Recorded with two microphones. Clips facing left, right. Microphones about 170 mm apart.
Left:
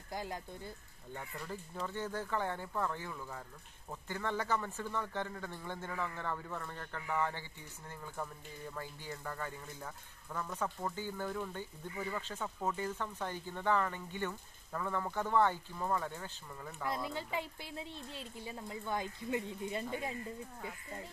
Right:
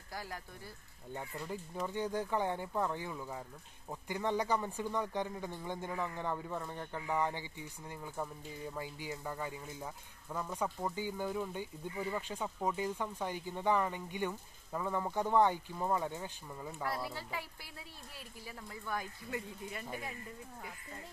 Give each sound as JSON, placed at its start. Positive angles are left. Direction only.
{"t": 0.1, "sound": "speech", "side_deg": 20}
{"t": 1.1, "sound": "speech", "side_deg": -15}
{"t": 16.8, "sound": "speech", "side_deg": 20}